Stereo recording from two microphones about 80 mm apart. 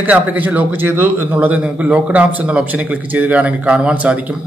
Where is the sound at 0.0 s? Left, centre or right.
Right.